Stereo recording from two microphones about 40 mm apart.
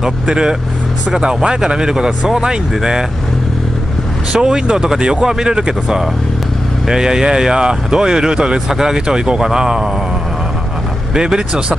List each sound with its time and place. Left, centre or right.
0.0 s speech: centre
4.3 s speech: centre
11.1 s speech: centre